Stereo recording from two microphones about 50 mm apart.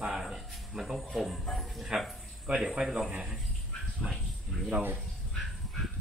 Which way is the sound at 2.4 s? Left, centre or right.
Centre.